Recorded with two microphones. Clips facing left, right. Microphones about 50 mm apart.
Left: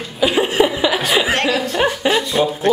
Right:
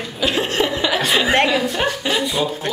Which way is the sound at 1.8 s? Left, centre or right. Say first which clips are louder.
Left 4 dB; centre.